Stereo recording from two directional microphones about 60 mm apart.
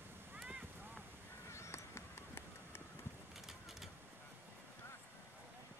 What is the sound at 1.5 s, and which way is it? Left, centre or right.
Run, left.